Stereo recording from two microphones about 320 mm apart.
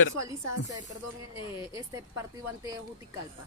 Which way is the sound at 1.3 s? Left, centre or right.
Centre.